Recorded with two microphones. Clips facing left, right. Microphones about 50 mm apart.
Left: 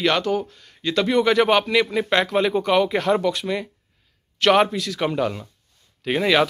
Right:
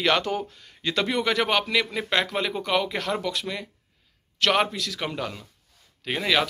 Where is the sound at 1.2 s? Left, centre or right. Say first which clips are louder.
Left 8 dB; centre.